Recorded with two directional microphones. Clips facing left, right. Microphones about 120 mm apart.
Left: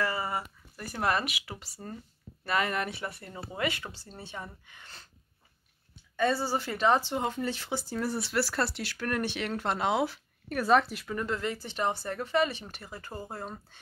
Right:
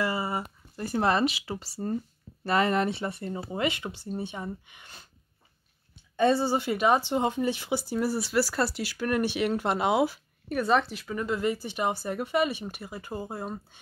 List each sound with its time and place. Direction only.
0.0 s a sound: 15° right (ahead or behind)
0.8 s speech: 25° right (ahead or behind)
6.1 s speech: 20° right (ahead or behind)